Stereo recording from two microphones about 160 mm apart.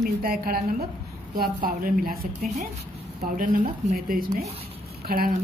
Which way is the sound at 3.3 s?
60° right (ahead or behind).